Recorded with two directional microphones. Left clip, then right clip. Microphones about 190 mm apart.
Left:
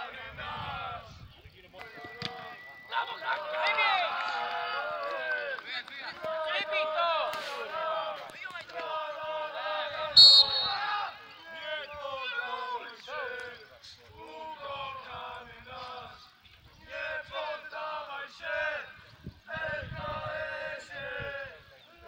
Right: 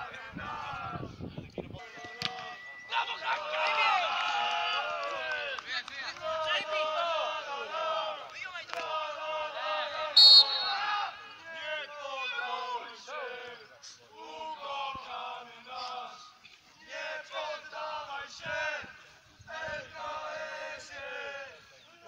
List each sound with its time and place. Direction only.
0.0 s a sound: 55° left (ahead or behind)
2.3 s run: 25° left (ahead or behind)
5.7 s run: 25° right (ahead or behind)
6.1 s run: 25° left (ahead or behind)
6.7 s a sound: 25° left (ahead or behind)
9.9 s basketball bounce: 25° left (ahead or behind)
14.2 s chant: 25° left (ahead or behind)
16.9 s choir: 25° left (ahead or behind)
19.5 s chant: 30° left (ahead or behind)